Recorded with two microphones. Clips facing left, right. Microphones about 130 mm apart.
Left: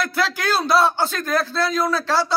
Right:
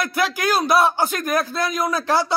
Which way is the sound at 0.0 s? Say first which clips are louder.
Right 1 dB; 10° right (ahead or behind).